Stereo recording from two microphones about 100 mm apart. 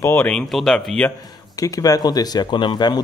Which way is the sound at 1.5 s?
35° left (ahead or behind).